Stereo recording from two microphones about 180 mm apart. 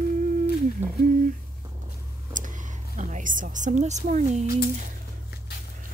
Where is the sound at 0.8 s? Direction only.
10° right (ahead or behind).